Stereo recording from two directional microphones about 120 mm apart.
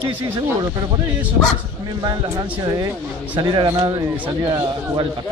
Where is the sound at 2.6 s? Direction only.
35° right (ahead or behind).